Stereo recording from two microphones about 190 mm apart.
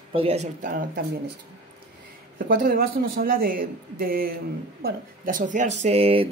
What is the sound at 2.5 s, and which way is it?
Speech, 55° right (ahead or behind).